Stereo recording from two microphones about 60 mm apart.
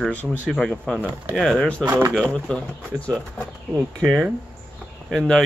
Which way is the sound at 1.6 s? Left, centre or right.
Centre.